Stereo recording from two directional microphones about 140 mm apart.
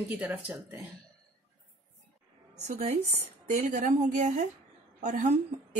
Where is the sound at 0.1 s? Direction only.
10° right (ahead or behind).